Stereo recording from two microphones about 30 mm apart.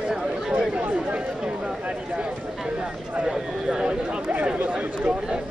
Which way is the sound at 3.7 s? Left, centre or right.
Right.